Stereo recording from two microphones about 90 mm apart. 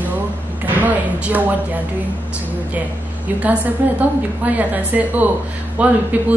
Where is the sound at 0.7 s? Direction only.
20° right (ahead or behind).